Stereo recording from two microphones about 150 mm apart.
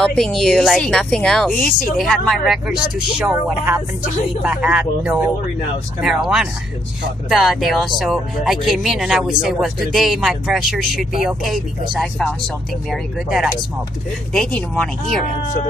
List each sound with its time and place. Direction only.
0.0 s speech: 5° left (ahead or behind)